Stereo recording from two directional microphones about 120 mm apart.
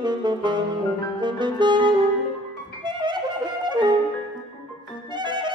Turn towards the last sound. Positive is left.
turn(degrees=-40)  # may be behind; listen again after turning